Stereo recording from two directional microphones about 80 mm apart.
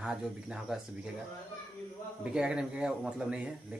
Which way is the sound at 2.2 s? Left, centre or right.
Centre.